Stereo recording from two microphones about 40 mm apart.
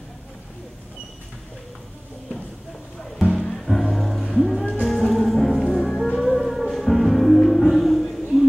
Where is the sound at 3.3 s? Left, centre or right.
Centre.